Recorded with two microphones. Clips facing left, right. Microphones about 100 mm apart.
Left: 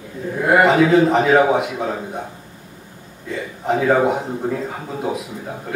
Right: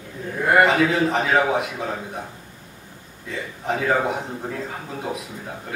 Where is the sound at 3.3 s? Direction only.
5° left (ahead or behind).